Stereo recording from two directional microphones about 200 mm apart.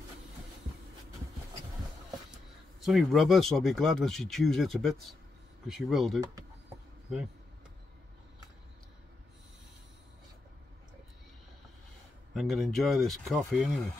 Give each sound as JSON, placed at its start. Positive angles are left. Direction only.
{"t": 2.8, "sound": "speech", "side_deg": 0}
{"t": 12.4, "sound": "speech", "side_deg": 0}